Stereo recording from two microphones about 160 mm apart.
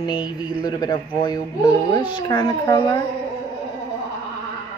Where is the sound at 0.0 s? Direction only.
25° left (ahead or behind).